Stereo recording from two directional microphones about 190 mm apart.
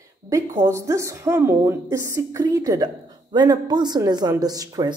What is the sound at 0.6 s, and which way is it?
A woman's voice, 15° right (ahead or behind).